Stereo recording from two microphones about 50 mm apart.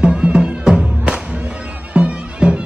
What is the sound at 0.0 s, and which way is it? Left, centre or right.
Music, centre.